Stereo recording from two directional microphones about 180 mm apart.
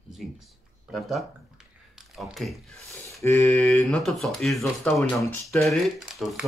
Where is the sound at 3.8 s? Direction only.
Centre (ahead or behind).